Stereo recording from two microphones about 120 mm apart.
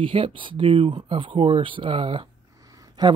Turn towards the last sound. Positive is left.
turn(degrees=-35)  # may be behind; listen again after turning